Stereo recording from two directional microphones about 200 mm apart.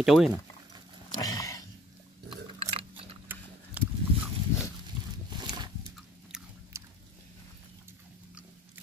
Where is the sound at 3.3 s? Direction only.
10° right (ahead or behind).